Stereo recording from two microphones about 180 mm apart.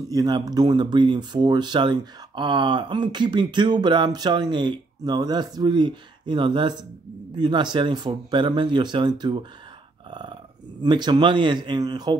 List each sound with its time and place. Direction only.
0.1 s a man's voice: 20° right (ahead or behind)